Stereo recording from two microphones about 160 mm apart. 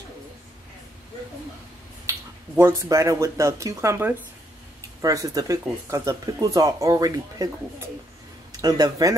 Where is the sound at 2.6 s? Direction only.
15° right (ahead or behind).